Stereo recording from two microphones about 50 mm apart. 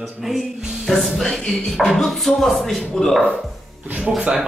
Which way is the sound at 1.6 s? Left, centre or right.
Centre.